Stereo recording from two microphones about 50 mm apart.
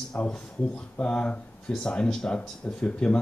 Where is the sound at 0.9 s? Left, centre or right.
Left.